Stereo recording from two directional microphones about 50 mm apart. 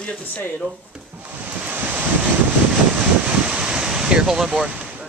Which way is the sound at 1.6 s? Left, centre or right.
Right.